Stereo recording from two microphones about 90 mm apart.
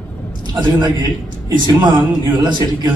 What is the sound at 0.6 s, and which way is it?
Speech, 50° right (ahead or behind).